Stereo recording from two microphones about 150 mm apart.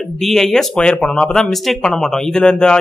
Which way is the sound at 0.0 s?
Centre (ahead or behind).